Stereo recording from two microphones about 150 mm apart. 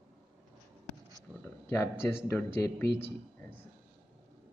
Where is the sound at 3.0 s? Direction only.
15° left (ahead or behind).